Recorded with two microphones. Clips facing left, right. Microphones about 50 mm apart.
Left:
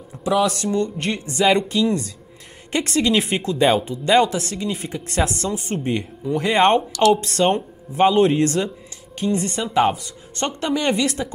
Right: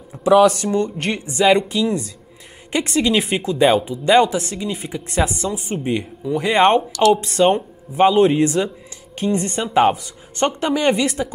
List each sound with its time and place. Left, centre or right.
0.2 s speech: right
1.3 s speech: centre
7.2 s speech: centre
9.2 s speech: right